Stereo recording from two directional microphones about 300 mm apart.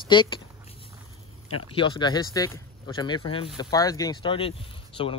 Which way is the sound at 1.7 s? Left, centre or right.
Centre.